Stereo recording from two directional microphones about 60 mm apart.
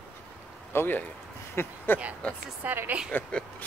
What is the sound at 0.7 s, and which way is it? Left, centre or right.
Speech, left.